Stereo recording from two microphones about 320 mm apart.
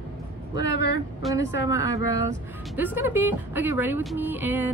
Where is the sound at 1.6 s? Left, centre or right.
Centre.